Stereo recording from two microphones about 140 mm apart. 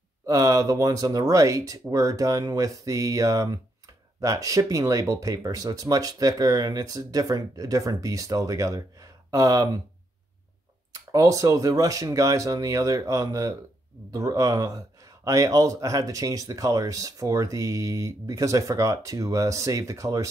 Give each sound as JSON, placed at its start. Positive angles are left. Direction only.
{"t": 0.3, "sound": "speech", "side_deg": -25}
{"t": 10.9, "sound": "speech", "side_deg": -25}